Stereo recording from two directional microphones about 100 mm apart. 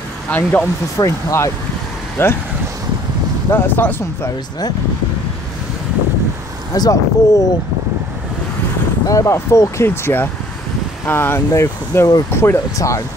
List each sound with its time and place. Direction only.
0.3 s speech: 15° left (ahead or behind)
0.9 s speech: 30° left (ahead or behind)
3.5 s speech: 20° left (ahead or behind)
6.7 s speech: 35° left (ahead or behind)
9.0 s speech: 35° left (ahead or behind)